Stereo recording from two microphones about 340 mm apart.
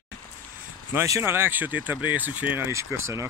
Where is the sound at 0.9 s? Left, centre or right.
Centre.